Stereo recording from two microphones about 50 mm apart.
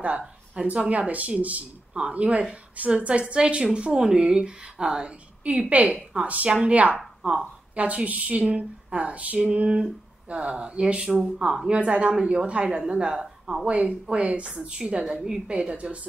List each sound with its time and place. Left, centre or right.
0.7 s a woman's voice: right